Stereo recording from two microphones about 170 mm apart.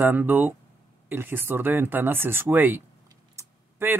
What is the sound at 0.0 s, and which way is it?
Speech, 10° right (ahead or behind).